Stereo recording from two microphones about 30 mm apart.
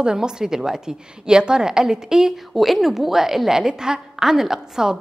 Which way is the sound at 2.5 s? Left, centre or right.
Centre.